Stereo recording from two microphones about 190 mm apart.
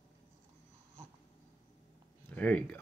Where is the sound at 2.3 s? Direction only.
10° left (ahead or behind).